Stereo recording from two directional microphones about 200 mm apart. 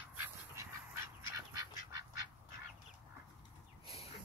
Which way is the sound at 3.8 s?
30° left (ahead or behind).